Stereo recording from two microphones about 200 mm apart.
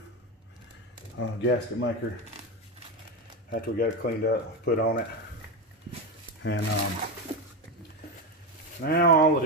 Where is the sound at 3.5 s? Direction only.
45° left (ahead or behind).